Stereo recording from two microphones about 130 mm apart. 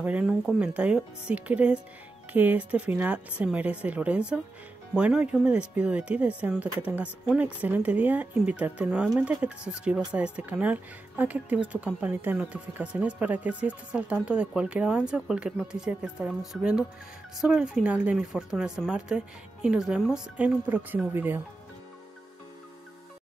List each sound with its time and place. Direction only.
0.0 s speech: 10° right (ahead or behind)